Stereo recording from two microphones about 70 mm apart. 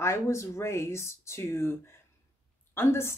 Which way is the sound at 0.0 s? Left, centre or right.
Left.